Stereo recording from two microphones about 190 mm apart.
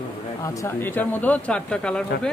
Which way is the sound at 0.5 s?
10° left (ahead or behind).